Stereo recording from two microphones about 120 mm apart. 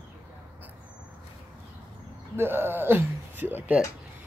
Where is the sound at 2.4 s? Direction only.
20° right (ahead or behind).